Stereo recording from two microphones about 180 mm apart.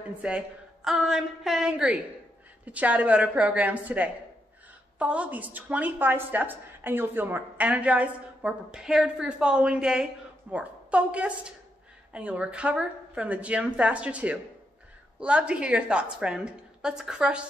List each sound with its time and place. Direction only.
0.2 s a woman's voice: 5° right (ahead or behind)